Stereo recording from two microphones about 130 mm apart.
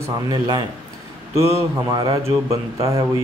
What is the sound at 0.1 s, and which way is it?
Speech, 30° right (ahead or behind).